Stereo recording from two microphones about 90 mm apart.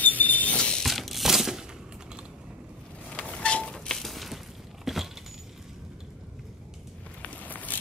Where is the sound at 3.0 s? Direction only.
10° left (ahead or behind).